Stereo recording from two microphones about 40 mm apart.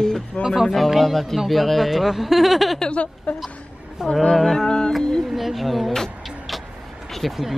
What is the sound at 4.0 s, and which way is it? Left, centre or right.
Speech, centre.